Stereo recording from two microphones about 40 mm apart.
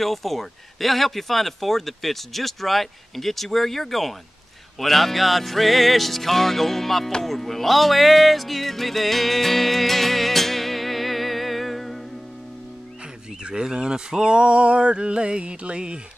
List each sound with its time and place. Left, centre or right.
0.0 s speech: centre
7.2 s music: centre
13.4 s speech: right